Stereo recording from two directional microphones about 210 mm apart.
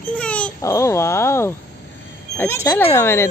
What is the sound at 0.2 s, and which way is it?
Babbling, 5° left (ahead or behind).